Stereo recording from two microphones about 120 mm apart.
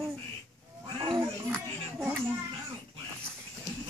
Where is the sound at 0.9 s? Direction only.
40° right (ahead or behind).